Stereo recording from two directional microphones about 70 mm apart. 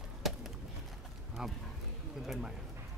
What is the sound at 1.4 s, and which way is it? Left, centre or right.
Speech, centre.